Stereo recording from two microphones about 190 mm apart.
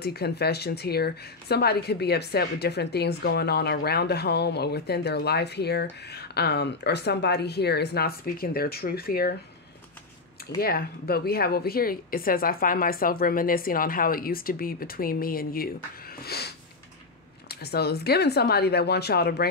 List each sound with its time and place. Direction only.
0.0 s speech: 60° left (ahead or behind)
10.6 s speech: 50° left (ahead or behind)